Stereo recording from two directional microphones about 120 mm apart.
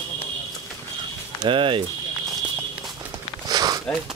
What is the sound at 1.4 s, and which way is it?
Speech, 45° right (ahead or behind).